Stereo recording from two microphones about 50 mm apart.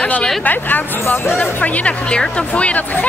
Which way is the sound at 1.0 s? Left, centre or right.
Left.